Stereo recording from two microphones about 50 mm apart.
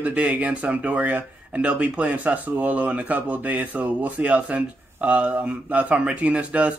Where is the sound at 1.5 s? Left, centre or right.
Right.